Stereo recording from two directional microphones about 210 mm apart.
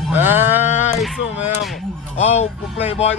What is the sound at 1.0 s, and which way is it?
Speech, centre (ahead or behind).